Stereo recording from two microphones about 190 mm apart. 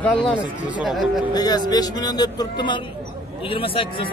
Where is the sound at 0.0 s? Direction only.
5° left (ahead or behind).